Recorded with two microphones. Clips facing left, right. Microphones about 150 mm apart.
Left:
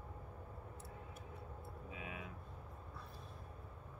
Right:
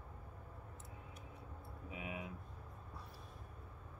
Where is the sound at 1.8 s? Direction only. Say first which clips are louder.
Right 4 dB; 20° right (ahead or behind).